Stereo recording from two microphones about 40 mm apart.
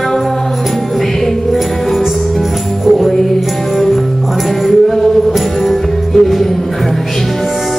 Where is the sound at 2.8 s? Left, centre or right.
Centre.